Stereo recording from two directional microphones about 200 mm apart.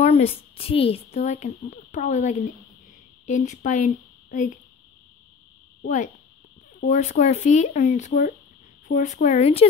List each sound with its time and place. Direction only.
0.0 s a child's voice: 30° left (ahead or behind)
6.8 s speech: 35° left (ahead or behind)